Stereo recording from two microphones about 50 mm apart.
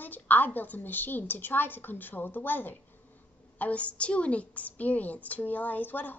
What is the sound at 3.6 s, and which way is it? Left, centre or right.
A woman's voice, left.